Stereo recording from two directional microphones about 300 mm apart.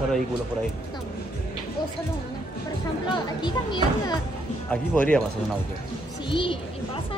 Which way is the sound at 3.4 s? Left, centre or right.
Centre.